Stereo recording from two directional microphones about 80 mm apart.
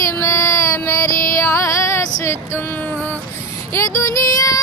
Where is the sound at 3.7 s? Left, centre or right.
Left.